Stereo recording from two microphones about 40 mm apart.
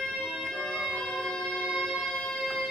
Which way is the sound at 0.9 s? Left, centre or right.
Centre.